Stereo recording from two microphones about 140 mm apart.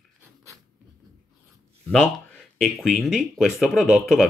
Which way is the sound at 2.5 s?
5° left (ahead or behind).